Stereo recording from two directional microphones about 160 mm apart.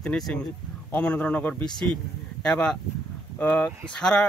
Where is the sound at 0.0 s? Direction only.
5° left (ahead or behind).